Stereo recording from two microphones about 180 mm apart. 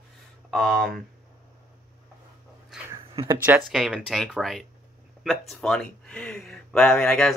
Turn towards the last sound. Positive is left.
turn(degrees=5)  # may be behind; listen again after turning